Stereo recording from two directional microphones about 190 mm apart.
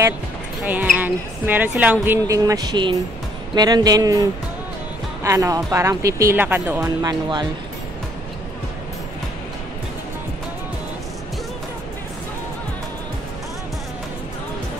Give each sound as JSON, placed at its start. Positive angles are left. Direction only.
{"t": 0.9, "sound": "speech", "side_deg": -10}